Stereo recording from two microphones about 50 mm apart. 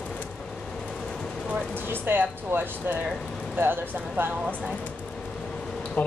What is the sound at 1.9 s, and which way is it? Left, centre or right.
Speech, right.